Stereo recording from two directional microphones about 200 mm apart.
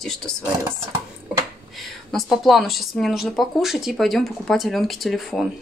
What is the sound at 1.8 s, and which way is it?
Speech, centre (ahead or behind).